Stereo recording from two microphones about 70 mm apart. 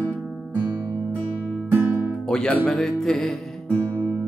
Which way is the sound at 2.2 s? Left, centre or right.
Centre.